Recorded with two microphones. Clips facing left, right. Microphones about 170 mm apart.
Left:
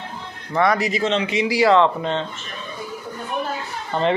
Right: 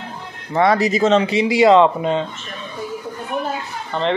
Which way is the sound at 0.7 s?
40° right (ahead or behind).